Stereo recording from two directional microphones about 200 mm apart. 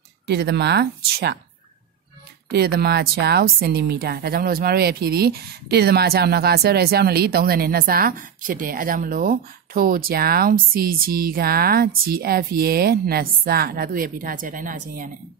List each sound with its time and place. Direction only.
0.3 s speech: 55° right (ahead or behind)
2.5 s a woman's voice: 50° right (ahead or behind)